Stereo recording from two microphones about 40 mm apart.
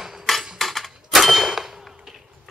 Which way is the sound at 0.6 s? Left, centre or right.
Centre.